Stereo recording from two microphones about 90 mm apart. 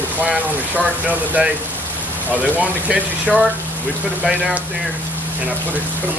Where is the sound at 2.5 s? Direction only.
15° right (ahead or behind).